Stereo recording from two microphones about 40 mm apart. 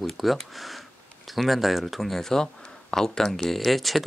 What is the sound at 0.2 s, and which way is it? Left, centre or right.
Speech, centre.